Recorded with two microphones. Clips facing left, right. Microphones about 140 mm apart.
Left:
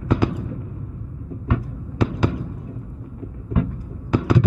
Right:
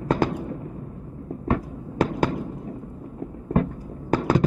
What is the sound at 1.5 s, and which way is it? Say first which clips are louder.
Heart sounds: right 1 dB; 45° right (ahead or behind).